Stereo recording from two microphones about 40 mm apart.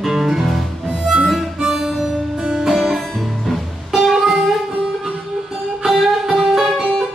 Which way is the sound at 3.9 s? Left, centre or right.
Centre.